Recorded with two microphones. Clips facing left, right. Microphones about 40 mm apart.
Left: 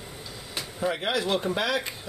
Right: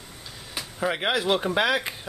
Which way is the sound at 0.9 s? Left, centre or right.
Right.